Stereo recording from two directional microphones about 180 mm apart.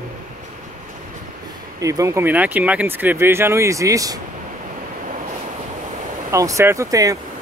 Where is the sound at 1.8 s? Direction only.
20° right (ahead or behind).